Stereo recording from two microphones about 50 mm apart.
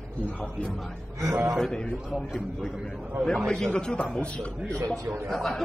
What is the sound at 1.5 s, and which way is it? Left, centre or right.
A man's voice, centre.